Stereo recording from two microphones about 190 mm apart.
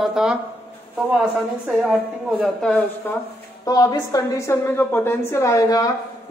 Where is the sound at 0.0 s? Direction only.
5° right (ahead or behind).